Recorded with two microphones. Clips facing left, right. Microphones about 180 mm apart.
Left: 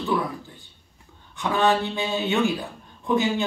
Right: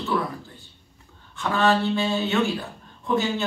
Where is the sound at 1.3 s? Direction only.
15° left (ahead or behind).